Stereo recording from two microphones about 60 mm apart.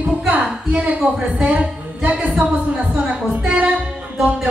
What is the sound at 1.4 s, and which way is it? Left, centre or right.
Speech, centre.